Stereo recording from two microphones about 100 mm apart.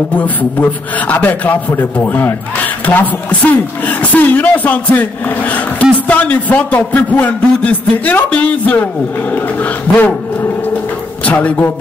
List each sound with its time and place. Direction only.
0.1 s a man's voice: 15° left (ahead or behind)
11.2 s a man's voice: 15° left (ahead or behind)